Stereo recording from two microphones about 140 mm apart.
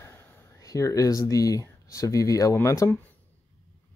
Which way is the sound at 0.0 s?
20° left (ahead or behind).